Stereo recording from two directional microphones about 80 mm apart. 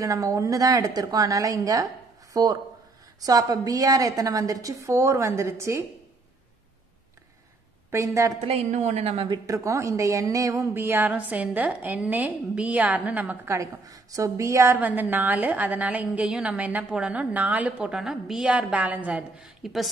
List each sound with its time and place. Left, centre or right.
0.0 s a woman's voice: right
7.9 s a woman's voice: right
9.5 s a woman's voice: right
10.7 s a woman's voice: right
11.1 s a woman's voice: centre
13.5 s a woman's voice: right
14.8 s a woman's voice: right
19.4 s speech: centre